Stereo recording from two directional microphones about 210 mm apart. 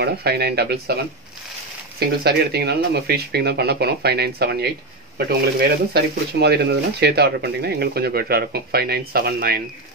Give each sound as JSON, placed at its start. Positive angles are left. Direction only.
{"t": 0.0, "sound": "speech", "side_deg": -50}
{"t": 2.0, "sound": "speech", "side_deg": -50}